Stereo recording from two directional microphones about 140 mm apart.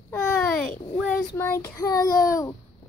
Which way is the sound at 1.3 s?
20° left (ahead or behind).